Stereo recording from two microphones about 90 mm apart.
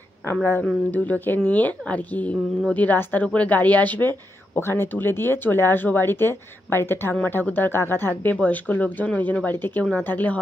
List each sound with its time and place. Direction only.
0.3 s a woman's voice: 20° left (ahead or behind)